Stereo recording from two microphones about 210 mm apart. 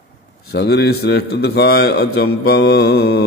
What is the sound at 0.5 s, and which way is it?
Mantra, 55° left (ahead or behind).